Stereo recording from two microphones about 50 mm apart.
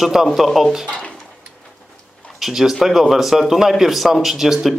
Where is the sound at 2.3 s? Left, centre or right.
Centre.